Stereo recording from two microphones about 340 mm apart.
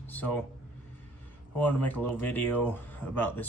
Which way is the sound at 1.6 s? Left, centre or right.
Centre.